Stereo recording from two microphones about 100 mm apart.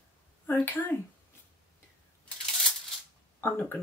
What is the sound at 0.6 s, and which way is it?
Speech, 20° left (ahead or behind).